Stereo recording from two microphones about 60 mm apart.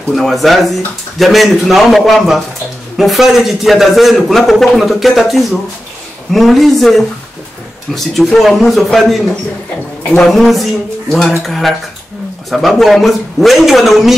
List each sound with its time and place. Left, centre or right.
0.1 s a man's voice: centre
10.3 s a man's voice: centre